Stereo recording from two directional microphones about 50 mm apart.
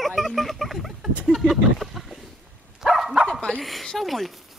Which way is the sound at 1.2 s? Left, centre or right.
Centre.